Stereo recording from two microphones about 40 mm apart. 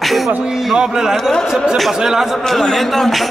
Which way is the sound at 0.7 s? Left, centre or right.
Centre.